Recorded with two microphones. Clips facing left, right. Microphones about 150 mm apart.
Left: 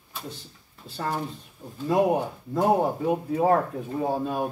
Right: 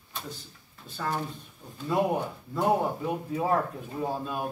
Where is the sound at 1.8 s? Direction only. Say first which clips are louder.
Left 4 dB; 40° left (ahead or behind).